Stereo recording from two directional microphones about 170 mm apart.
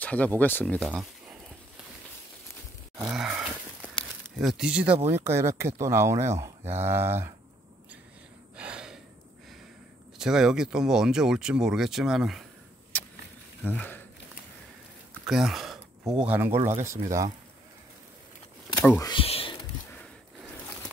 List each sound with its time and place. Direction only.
0.0 s speech: 10° left (ahead or behind)
3.0 s a sound: 5° right (ahead or behind)
4.4 s speech: 5° right (ahead or behind)
8.5 s gasp: 5° right (ahead or behind)
10.1 s speech: 5° right (ahead or behind)
12.9 s vehicle: 10° left (ahead or behind)
13.7 s speech: 10° left (ahead or behind)
15.2 s speech: 5° right (ahead or behind)
16.6 s speech: 45° right (ahead or behind)
16.9 s speech: 20° right (ahead or behind)
18.9 s speech: 25° left (ahead or behind)
19.2 s whispering: 35° left (ahead or behind)